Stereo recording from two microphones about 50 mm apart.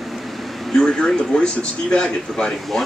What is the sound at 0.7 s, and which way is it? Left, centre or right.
Speech, centre.